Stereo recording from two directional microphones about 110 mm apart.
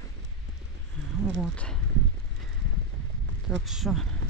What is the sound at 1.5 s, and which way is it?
Speech, 10° left (ahead or behind).